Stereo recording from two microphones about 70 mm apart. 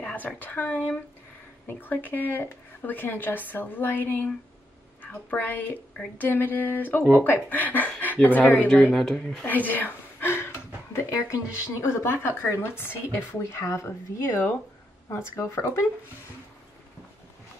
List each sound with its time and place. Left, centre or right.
0.0 s a woman's voice: left
8.9 s speech: centre
9.7 s a sound: left
11.8 s a woman's voice: left